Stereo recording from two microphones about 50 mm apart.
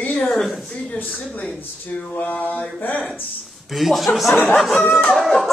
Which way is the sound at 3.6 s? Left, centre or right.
Centre.